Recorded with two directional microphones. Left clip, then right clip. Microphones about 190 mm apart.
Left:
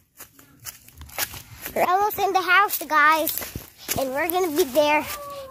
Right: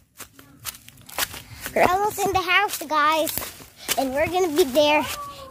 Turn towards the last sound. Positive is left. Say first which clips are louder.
# right 1 dB
turn(degrees=5)  # may be behind; listen again after turning